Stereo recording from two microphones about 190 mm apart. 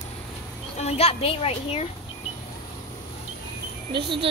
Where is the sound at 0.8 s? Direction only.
35° left (ahead or behind).